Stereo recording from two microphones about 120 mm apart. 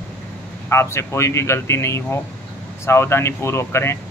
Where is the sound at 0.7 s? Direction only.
20° left (ahead or behind).